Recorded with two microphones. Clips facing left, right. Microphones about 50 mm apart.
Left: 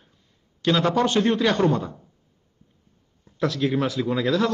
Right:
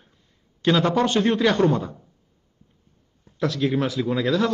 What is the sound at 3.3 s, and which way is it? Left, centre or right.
Speech, centre.